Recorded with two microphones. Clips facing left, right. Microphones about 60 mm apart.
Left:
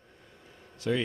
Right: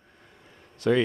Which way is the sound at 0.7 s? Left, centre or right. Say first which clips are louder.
Right 7 dB; right.